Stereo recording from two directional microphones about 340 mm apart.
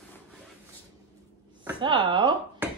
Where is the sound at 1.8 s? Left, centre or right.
Centre.